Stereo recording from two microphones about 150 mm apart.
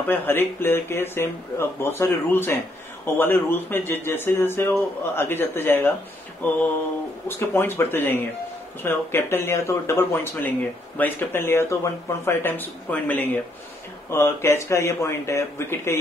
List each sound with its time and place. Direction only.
0.0 s a man's voice: 10° left (ahead or behind)